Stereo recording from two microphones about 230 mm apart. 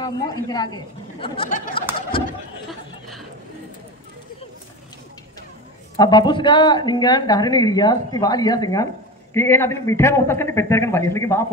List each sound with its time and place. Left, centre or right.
0.0 s a woman's voice: centre
2.1 s a sound: left
5.9 s a woman's voice: centre